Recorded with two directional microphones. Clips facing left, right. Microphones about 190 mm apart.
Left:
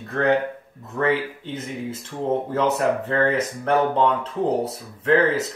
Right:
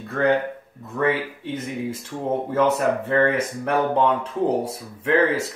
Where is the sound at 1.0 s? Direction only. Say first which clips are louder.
Even; 10° right (ahead or behind).